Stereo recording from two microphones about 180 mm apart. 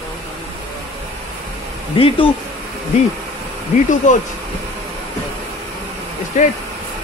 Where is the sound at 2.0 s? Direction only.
30° left (ahead or behind).